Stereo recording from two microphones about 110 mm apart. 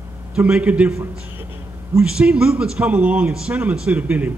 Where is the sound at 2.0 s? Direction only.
10° right (ahead or behind).